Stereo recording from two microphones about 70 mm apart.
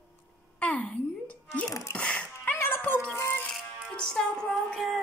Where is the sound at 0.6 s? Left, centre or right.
Centre.